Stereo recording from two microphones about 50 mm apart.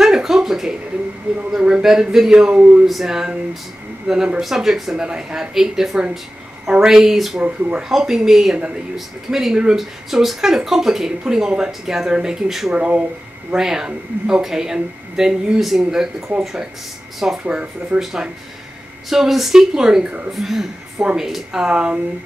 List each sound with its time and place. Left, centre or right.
0.0 s a sound: centre
1.6 s speech: centre
2.3 s speech: right
2.9 s speech: centre
12.4 s speech: centre
12.7 s speech: right
13.5 s speech: centre
20.3 s speech: centre
21.6 s speech: centre